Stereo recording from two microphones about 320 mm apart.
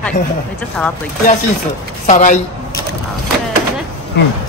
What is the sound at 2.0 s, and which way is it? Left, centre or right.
Speech, left.